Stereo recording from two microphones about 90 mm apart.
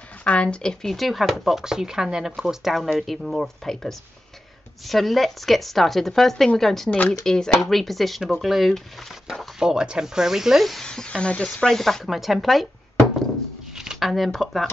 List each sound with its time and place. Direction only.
0.2 s speech: 15° left (ahead or behind)
13.7 s speech: centre (ahead or behind)